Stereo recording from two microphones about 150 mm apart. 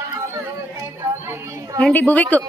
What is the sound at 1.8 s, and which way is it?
Speech, 10° left (ahead or behind).